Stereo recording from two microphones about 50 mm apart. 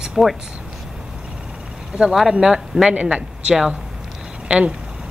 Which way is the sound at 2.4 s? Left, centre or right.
Centre.